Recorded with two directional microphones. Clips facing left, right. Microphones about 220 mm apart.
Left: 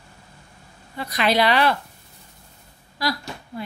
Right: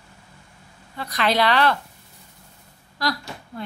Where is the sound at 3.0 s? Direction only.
5° left (ahead or behind).